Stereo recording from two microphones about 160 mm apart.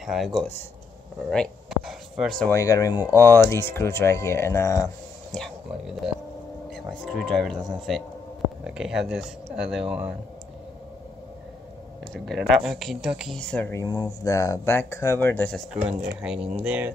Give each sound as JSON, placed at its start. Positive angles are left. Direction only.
{"t": 0.0, "sound": "speech", "side_deg": 0}
{"t": 2.5, "sound": "speech", "side_deg": 20}
{"t": 5.3, "sound": "speech", "side_deg": 0}
{"t": 12.1, "sound": "speech", "side_deg": 0}
{"t": 13.7, "sound": "speech", "side_deg": 20}
{"t": 16.2, "sound": "speech", "side_deg": -5}